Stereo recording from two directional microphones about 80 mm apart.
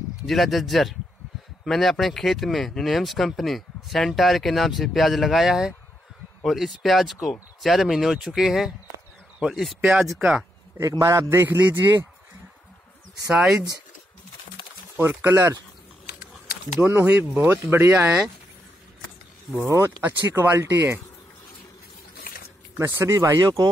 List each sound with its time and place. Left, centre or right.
0.3 s speech: centre
10.8 s speech: right
15.0 s speech: right
16.8 s speech: right
19.6 s speech: right
22.8 s speech: right